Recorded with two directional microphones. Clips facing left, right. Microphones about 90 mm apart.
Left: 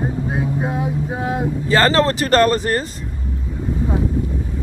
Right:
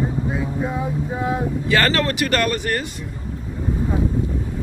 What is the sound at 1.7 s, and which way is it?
Speech, 30° left (ahead or behind).